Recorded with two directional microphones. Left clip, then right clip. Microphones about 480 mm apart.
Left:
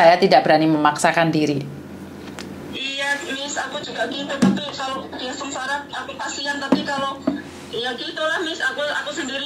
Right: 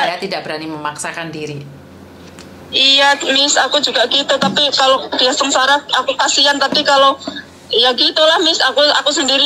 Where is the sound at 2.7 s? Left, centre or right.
Right.